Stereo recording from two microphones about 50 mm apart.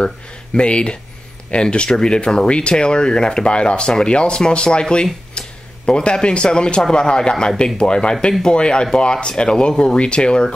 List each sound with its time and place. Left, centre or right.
0.6 s speech: left